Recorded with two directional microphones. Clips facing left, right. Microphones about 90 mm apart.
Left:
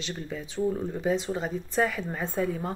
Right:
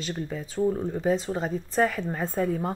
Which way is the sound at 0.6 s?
10° right (ahead or behind).